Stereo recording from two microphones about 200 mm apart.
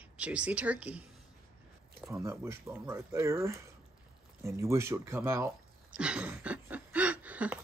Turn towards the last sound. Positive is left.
turn(degrees=-5)  # may be behind; listen again after turning